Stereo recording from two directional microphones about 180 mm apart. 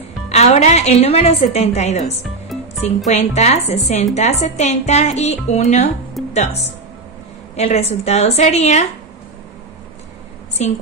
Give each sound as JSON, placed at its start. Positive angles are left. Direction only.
{"t": 0.3, "sound": "a woman's voice", "side_deg": 40}
{"t": 10.6, "sound": "a woman's voice", "side_deg": 40}